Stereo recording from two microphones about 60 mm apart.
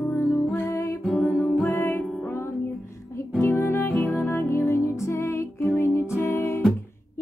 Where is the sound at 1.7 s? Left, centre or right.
Left.